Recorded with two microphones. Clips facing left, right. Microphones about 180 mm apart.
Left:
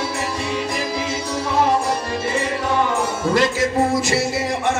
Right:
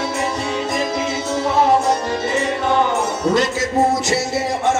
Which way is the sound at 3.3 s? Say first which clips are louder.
Left 2 dB; 20° right (ahead or behind).